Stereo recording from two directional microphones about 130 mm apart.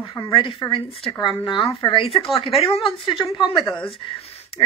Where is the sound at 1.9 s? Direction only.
45° left (ahead or behind).